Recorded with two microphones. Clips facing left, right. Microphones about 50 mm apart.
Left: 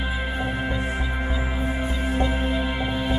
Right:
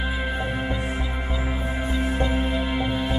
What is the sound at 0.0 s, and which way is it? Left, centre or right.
Music, centre.